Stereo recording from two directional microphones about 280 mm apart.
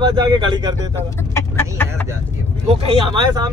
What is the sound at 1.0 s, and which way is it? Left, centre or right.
Speech, centre.